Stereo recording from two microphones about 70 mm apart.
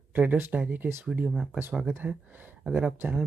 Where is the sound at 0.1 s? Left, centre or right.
Right.